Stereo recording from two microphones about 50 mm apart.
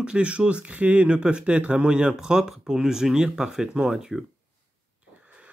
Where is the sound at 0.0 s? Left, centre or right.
Right.